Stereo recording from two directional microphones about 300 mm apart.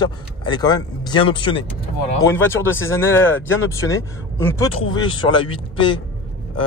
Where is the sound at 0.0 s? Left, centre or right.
Centre.